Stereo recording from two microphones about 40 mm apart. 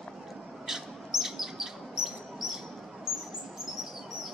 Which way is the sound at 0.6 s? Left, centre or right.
Centre.